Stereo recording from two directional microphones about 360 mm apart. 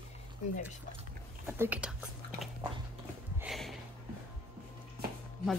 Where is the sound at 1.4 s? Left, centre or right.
Centre.